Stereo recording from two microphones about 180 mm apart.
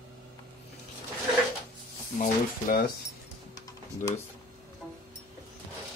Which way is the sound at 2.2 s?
50° left (ahead or behind).